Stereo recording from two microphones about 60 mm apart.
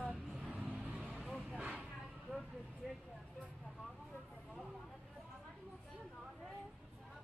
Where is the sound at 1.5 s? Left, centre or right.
Centre.